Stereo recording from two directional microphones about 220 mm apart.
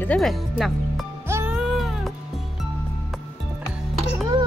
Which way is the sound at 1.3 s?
10° right (ahead or behind).